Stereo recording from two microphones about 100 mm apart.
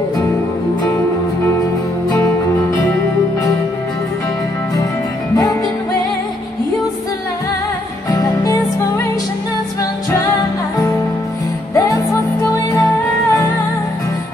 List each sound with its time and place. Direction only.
5.3 s music: 35° left (ahead or behind)
8.1 s music: 35° left (ahead or behind)
11.7 s music: 30° left (ahead or behind)